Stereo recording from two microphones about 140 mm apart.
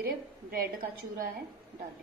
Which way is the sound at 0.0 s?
90° right.